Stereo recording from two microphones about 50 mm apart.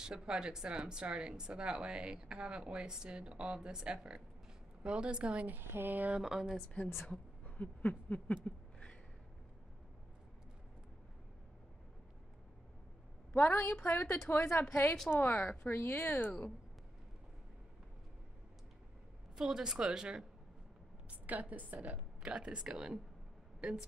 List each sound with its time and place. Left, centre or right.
0.0 s speech: centre
5.5 s speech: right
6.1 s a woman's voice: centre
7.1 s speech: left
8.5 s a sound: left
13.3 s speech: left
15.8 s speech: left
16.1 s speech: left
19.3 s a woman's voice: centre
21.1 s a woman's voice: right